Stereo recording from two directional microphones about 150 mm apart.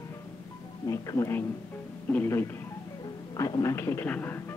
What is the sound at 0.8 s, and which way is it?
A man's voice, 20° left (ahead or behind).